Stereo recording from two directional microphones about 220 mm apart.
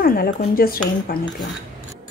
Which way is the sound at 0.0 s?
40° left (ahead or behind).